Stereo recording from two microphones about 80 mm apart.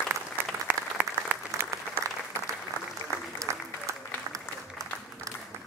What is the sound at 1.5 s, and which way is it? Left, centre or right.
Applause, right.